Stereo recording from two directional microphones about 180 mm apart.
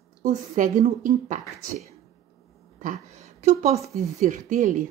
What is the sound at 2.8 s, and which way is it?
A woman's voice, 40° right (ahead or behind).